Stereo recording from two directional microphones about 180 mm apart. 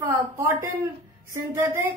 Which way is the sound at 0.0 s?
15° right (ahead or behind).